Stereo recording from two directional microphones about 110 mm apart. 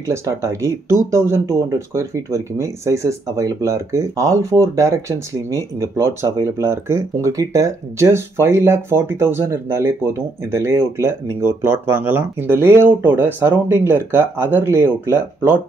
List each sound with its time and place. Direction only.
0.0 s speech: 25° right (ahead or behind)